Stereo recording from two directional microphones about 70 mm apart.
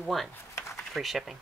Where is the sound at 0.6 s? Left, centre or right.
Left.